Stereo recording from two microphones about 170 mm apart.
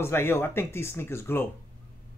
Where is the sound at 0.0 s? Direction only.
15° left (ahead or behind).